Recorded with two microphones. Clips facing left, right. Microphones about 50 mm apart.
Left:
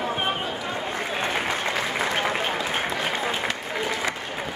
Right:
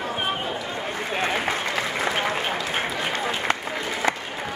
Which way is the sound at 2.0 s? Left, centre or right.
Centre.